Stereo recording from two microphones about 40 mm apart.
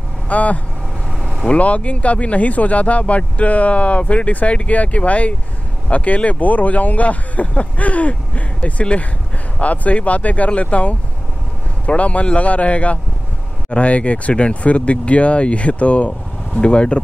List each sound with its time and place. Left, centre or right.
0.3 s speech: left